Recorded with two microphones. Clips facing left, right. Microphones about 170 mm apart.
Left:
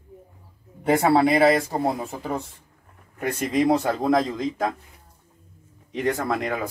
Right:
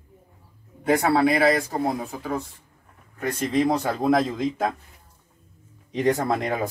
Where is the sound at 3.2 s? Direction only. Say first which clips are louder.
Even; 10° left (ahead or behind).